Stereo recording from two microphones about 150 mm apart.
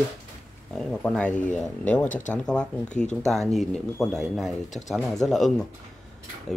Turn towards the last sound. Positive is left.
turn(degrees=5)  # may be behind; listen again after turning